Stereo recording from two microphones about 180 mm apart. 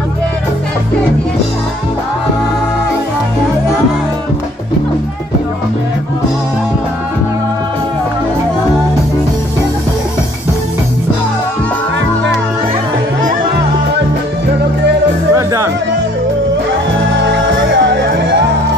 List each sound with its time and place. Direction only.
15.3 s music: 15° right (ahead or behind)
17.2 s music: 85° right